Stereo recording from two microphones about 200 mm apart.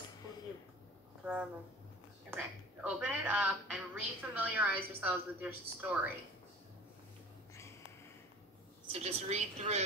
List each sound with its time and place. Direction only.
1.2 s a woman's voice: 5° right (ahead or behind)
8.8 s a woman's voice: 30° right (ahead or behind)